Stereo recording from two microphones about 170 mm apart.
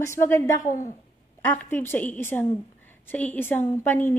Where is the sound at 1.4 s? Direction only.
10° left (ahead or behind).